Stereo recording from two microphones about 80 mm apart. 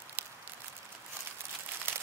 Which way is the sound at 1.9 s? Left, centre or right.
Right.